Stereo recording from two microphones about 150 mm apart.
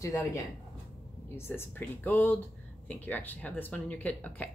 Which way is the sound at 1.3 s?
15° left (ahead or behind).